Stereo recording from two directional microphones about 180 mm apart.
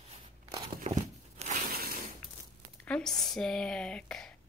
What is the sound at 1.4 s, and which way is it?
Crushing, 45° right (ahead or behind).